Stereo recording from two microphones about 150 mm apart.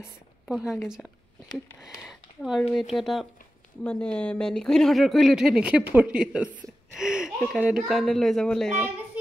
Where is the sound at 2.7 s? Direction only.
Centre (ahead or behind).